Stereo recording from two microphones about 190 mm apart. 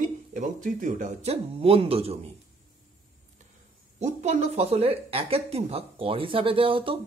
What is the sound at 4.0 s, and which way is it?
Speech, 35° right (ahead or behind).